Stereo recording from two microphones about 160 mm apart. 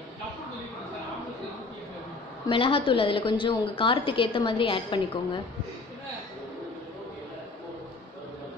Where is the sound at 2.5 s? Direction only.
35° left (ahead or behind).